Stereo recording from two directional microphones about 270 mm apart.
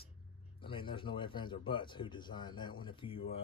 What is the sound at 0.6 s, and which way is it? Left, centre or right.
Speech, centre.